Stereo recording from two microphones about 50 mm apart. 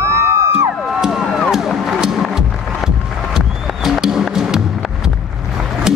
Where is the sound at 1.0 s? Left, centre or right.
Centre.